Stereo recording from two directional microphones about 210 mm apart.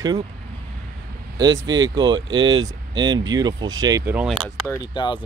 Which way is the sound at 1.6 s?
20° right (ahead or behind).